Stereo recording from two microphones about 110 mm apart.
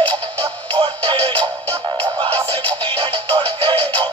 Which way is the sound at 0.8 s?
45° right (ahead or behind).